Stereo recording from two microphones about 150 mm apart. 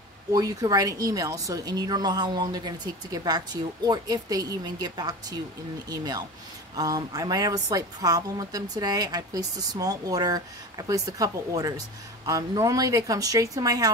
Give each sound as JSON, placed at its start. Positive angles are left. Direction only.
{"t": 0.3, "sound": "speech", "side_deg": -25}